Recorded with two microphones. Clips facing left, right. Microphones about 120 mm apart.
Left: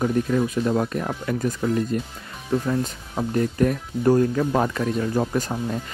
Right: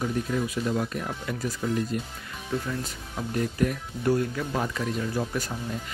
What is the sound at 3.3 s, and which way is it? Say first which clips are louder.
Speech: left 5 dB; 40° left (ahead or behind).